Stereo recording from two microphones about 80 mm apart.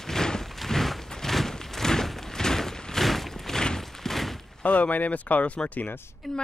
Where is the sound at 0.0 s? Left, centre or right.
Centre.